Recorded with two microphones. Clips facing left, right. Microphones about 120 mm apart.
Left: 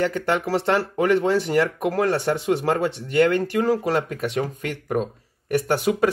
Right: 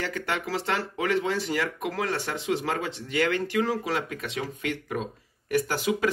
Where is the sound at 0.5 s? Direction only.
45° left (ahead or behind).